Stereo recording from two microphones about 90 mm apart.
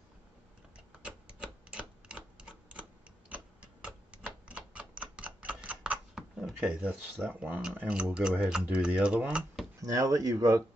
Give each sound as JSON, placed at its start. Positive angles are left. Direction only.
{"t": 1.0, "sound": "typewriter", "side_deg": -10}
{"t": 3.3, "sound": "tick-tock", "side_deg": -15}
{"t": 7.2, "sound": "speech", "side_deg": -20}
{"t": 9.8, "sound": "speech", "side_deg": -40}